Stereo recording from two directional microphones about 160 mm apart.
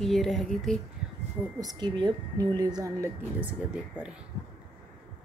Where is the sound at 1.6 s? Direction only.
25° right (ahead or behind).